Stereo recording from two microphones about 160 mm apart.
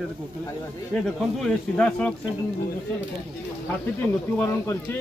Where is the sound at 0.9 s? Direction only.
5° left (ahead or behind).